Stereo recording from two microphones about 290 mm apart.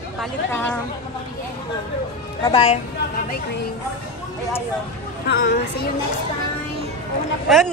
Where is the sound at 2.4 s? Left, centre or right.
Centre.